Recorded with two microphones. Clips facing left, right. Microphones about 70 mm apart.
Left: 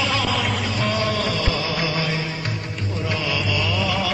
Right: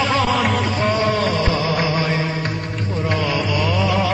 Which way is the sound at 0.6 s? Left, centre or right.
Right.